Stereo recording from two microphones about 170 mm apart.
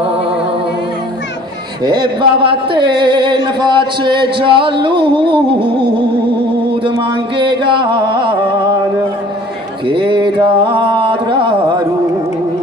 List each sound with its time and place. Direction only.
1.9 s music: 25° right (ahead or behind)
7.0 s music: 30° right (ahead or behind)
9.8 s music: 30° right (ahead or behind)